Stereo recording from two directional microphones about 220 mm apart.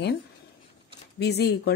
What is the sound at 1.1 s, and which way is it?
Speech, 50° left (ahead or behind).